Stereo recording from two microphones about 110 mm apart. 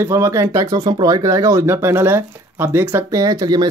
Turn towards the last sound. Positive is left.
turn(degrees=-35)  # may be behind; listen again after turning